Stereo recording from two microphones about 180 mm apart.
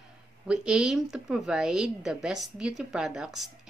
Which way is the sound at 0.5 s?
5° right (ahead or behind).